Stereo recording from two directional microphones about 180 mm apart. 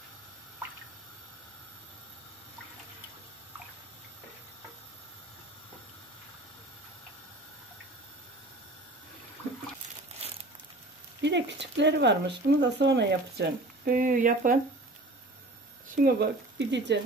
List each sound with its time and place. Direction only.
10.2 s crumpling: 35° right (ahead or behind)
11.1 s speech: 75° right (ahead or behind); by 14.6 s 50° right (ahead or behind)
15.9 s speech: 55° right (ahead or behind); by 17.0 s 75° right (ahead or behind)